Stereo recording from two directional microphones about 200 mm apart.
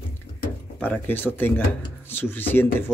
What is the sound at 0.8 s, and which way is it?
Speech, 10° left (ahead or behind).